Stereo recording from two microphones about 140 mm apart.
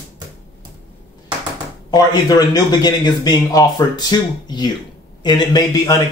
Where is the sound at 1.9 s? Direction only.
30° left (ahead or behind).